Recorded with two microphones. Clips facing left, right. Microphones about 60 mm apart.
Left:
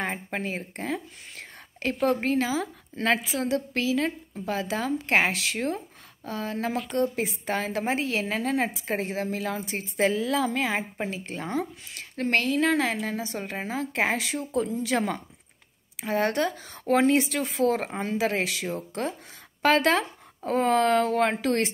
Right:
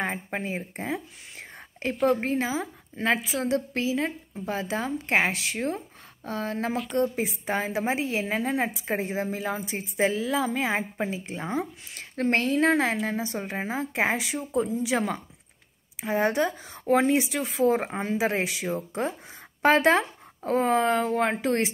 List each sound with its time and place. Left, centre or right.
0.3 s speech: centre
2.0 s a woman's voice: centre
2.2 s speech: right
3.4 s speech: right
6.2 s speech: right
7.2 s speech: centre
9.9 s speech: centre; by 12.0 s right
12.0 s speech: right; by 19.1 s centre
19.6 s a sound: right
20.5 s speech: centre
21.4 s speech: right